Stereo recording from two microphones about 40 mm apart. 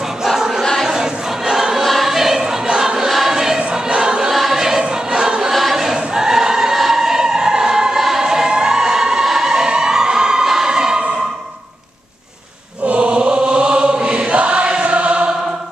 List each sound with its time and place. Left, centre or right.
0.2 s a sound: centre
0.8 s choir: centre
1.9 s choir: centre; by 3.1 s right
3.1 s choir: centre
3.5 s choir: right
4.3 s choir: centre
4.6 s choir: centre
5.5 s choir: centre
5.9 s choir: centre
8.2 s music: centre
12.8 s choir: right